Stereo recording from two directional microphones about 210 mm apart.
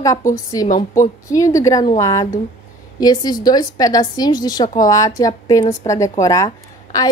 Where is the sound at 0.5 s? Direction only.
15° left (ahead or behind).